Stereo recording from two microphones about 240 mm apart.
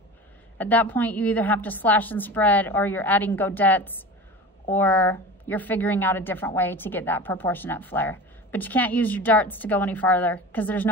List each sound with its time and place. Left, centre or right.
0.6 s a woman's voice: centre